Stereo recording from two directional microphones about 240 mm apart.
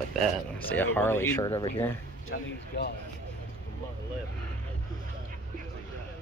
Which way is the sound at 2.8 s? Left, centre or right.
Left.